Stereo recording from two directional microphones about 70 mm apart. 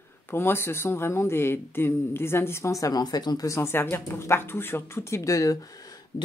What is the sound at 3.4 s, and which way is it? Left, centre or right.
Speech, left.